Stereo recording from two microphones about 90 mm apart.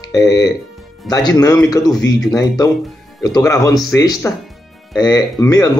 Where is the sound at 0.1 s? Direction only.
40° left (ahead or behind).